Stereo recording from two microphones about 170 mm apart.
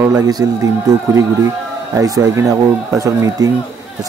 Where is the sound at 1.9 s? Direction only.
20° right (ahead or behind).